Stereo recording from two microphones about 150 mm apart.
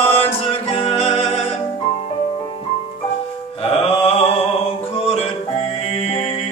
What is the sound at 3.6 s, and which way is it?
Music, 40° left (ahead or behind).